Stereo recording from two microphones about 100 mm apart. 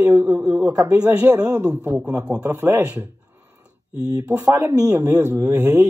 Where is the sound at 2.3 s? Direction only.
35° right (ahead or behind).